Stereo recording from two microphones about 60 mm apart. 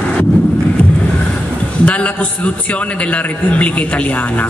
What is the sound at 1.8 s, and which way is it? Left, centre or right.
A man's voice, left.